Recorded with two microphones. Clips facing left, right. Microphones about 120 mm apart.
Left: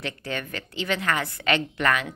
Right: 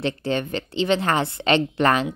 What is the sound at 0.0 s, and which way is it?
A woman's voice, 30° right (ahead or behind).